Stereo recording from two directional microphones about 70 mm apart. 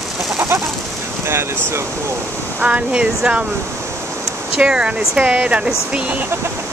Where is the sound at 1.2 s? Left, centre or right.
Right.